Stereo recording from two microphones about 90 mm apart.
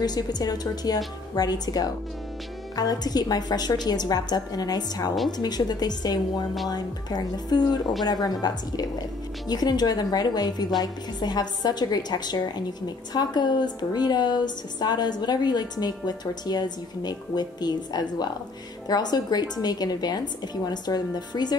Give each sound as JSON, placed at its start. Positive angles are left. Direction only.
{"t": 0.0, "sound": "a woman's voice", "side_deg": 50}